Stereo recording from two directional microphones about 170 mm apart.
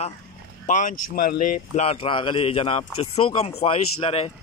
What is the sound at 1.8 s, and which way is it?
A man's voice, 35° left (ahead or behind).